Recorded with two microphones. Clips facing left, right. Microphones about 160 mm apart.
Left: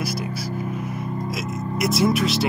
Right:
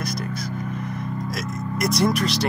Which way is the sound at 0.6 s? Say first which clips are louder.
Left 1 dB; 5° left (ahead or behind).